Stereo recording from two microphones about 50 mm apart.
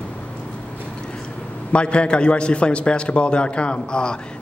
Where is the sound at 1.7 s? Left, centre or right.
Left.